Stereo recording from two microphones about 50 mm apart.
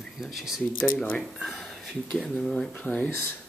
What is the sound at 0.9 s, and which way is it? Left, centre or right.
Speech, centre.